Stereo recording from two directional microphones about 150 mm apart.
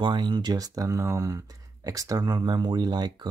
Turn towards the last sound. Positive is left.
turn(degrees=-30)  # may be behind; listen again after turning